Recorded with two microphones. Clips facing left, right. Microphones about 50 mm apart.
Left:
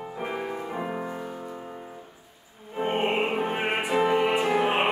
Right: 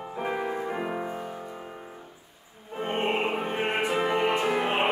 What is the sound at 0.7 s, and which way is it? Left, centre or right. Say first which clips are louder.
Music: right 1 dB; centre.